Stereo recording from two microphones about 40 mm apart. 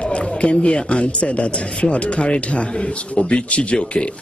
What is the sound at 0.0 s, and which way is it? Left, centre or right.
A man's voice, left.